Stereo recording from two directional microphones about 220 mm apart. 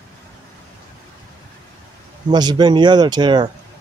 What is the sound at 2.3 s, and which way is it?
Speech, 20° right (ahead or behind).